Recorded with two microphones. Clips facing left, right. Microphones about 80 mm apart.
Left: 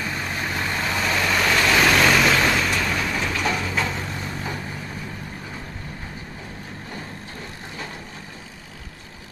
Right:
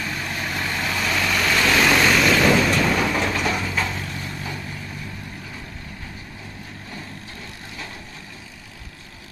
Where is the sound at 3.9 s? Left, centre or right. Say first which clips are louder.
Left 1 dB; left.